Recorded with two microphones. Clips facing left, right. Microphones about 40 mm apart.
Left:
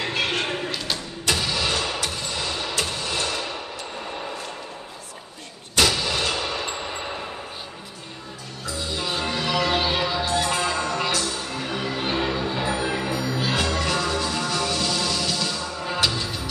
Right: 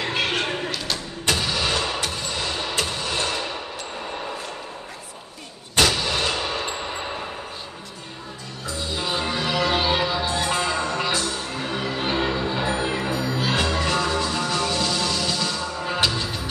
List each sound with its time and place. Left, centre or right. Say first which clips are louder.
0.0 s a sound: right 1 dB; centre
1.2 s engine starting: right 1 dB; right
2.9 s music: right 1 dB; right
6.0 s artillery fire: right 1 dB; centre
6.4 s a sound: right 1 dB; centre
8.9 s music: right 1 dB; centre
10.2 s music: even; centre